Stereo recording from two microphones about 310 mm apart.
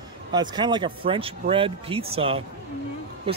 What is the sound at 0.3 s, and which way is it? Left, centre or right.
Speech, centre.